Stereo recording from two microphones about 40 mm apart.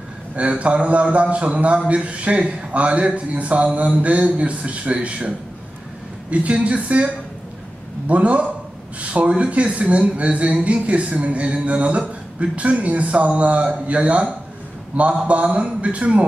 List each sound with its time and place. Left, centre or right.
0.4 s speech: right
6.3 s speech: right
8.1 s speech: right